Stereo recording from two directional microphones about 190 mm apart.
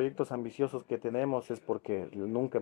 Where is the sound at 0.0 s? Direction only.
20° left (ahead or behind).